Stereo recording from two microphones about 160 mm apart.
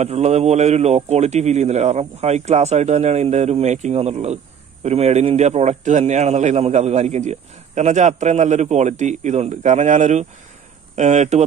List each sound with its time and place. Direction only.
0.0 s a man's voice: 45° right (ahead or behind)